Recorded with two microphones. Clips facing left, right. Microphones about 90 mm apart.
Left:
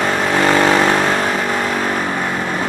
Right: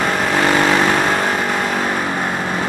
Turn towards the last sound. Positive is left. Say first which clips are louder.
# left 2 dB
turn(degrees=30)  # may be behind; listen again after turning